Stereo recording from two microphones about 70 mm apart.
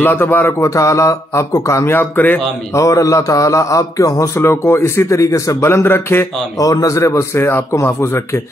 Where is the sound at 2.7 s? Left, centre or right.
Left.